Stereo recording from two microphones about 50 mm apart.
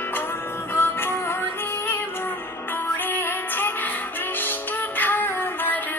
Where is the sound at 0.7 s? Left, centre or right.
Left.